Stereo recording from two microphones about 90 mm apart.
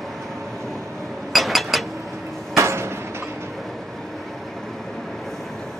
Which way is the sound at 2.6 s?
30° right (ahead or behind).